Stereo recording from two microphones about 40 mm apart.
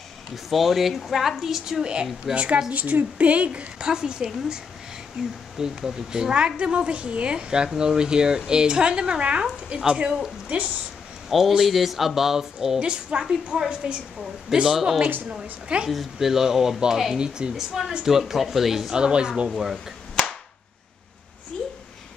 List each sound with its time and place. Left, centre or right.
0.5 s speech: centre
2.3 s speech: right
3.8 s speech: centre
7.3 s speech: centre
11.2 s a man's voice: centre
12.8 s speech: right
14.5 s speech: centre
18.9 s speech: right
19.5 s speech: centre
20.2 s clapping: centre